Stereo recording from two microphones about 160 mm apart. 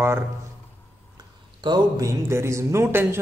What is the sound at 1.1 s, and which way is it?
A man's voice, 25° right (ahead or behind).